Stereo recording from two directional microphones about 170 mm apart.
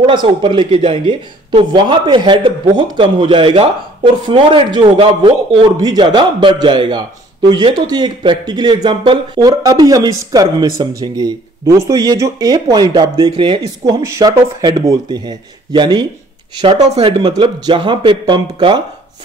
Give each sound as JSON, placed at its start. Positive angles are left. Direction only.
{"t": 0.0, "sound": "speech", "side_deg": -30}